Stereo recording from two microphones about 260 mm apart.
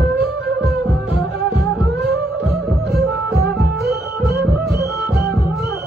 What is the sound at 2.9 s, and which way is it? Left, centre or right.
Music, right.